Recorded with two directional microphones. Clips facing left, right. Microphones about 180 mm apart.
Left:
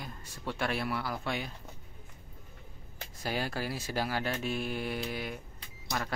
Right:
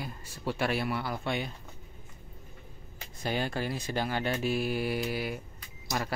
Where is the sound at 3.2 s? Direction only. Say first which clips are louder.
Right 3 dB; 5° left (ahead or behind).